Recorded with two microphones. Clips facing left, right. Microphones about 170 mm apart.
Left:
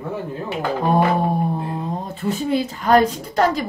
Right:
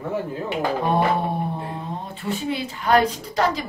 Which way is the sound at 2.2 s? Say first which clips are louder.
Left 5 dB; 40° left (ahead or behind).